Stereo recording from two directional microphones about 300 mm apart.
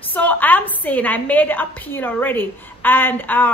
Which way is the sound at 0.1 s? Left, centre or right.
Centre.